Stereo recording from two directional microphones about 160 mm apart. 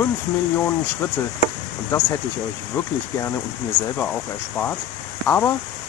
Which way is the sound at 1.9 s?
15° left (ahead or behind).